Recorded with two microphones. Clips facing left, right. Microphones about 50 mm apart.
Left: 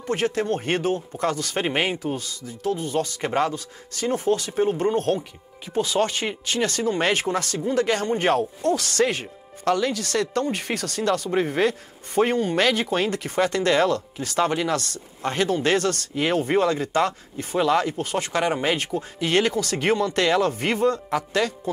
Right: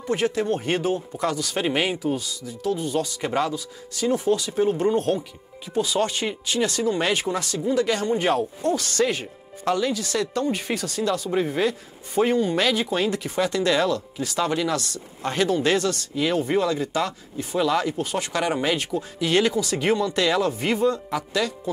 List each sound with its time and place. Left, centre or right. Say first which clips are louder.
0.0 s speech: right 1 dB; left